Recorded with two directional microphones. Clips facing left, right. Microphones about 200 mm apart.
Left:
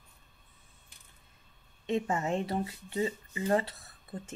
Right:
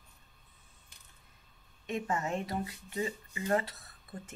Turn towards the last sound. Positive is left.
turn(degrees=30)  # may be behind; listen again after turning